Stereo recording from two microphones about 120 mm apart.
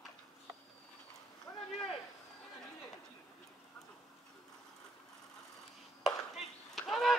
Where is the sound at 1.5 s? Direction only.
20° left (ahead or behind).